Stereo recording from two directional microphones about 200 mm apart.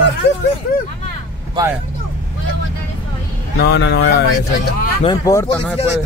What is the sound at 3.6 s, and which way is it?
Speech, 55° left (ahead or behind).